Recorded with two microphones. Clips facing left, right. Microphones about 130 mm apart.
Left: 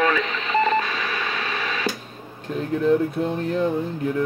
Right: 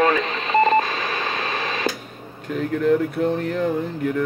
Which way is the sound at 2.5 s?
30° left (ahead or behind).